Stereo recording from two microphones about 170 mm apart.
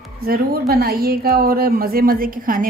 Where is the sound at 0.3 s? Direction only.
60° right (ahead or behind).